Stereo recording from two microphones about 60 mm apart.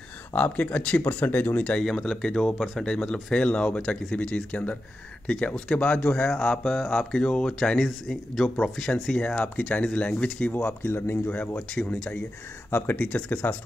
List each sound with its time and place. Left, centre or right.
0.3 s speech: left
1.6 s speech: centre
9.2 s speech: left
11.2 s speech: left
11.7 s speech: centre
12.7 s speech: left